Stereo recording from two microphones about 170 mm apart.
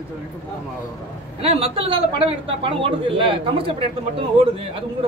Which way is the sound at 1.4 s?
35° right (ahead or behind).